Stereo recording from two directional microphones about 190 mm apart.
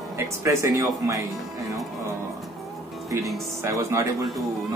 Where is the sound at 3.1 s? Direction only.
15° right (ahead or behind).